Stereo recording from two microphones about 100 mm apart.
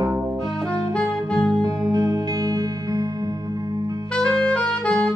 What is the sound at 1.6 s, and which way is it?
Music, 40° right (ahead or behind).